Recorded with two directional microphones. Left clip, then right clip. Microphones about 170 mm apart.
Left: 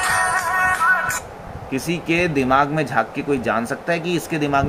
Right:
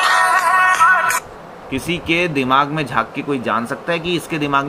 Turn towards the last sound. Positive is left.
turn(degrees=5)  # may be behind; listen again after turning